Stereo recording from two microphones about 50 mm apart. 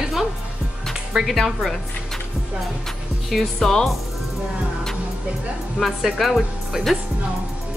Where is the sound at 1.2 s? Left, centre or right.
Centre.